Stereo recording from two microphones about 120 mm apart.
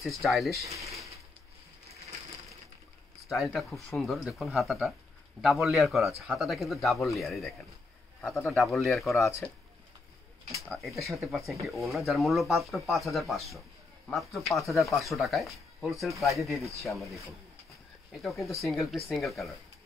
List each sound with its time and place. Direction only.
0.0 s speech: centre (ahead or behind)
0.7 s speech: 25° right (ahead or behind)
3.3 s speech: centre (ahead or behind)
10.7 s speech: centre (ahead or behind)
18.2 s speech: centre (ahead or behind)